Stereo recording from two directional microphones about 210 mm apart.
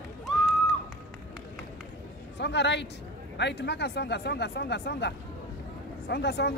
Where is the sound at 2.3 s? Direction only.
55° left (ahead or behind).